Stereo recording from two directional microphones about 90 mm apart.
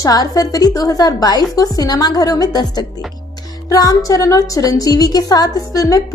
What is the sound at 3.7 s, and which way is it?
A woman's voice, 40° left (ahead or behind).